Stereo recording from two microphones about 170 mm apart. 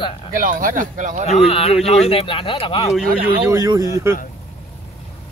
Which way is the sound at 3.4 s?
20° right (ahead or behind).